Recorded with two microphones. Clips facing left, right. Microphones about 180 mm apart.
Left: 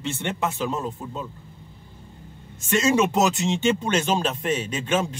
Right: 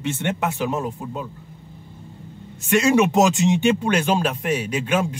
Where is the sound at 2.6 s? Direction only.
15° right (ahead or behind).